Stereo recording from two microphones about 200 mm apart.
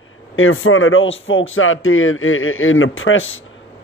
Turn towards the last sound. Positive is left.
turn(degrees=80)